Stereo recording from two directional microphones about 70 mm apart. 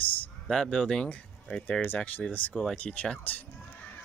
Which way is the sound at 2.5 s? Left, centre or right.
Centre.